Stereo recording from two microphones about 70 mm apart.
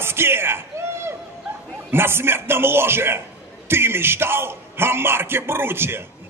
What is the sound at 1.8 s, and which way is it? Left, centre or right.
Speech, right.